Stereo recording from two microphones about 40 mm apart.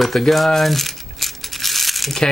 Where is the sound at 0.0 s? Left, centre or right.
Centre.